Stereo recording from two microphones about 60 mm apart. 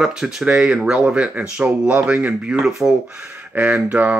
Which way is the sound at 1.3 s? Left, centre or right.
Right.